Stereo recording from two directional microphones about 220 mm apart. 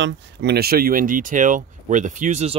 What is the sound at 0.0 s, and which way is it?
Speech, 50° right (ahead or behind).